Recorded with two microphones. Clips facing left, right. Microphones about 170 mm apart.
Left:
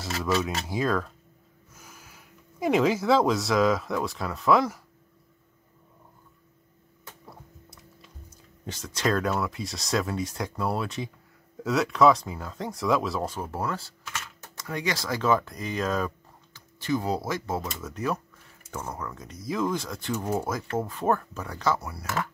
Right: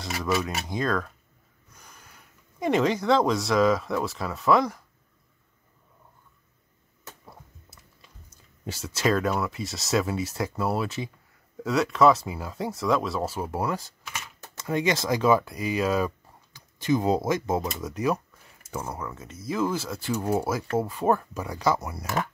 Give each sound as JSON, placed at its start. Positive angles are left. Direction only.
{"t": 0.3, "sound": "speech", "side_deg": -10}
{"t": 0.7, "sound": "speech", "side_deg": 5}
{"t": 8.6, "sound": "speech", "side_deg": -5}